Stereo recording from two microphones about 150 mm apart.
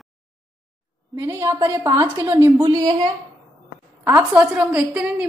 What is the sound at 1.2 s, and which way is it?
A woman's voice, 15° right (ahead or behind).